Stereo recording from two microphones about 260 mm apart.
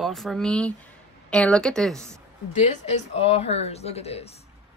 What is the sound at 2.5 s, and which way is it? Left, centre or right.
Speech, left.